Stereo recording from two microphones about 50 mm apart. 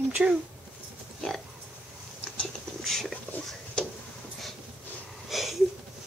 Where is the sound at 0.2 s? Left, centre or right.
Right.